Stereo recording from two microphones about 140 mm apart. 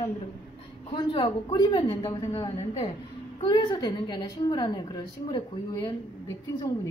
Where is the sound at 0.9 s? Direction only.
35° left (ahead or behind).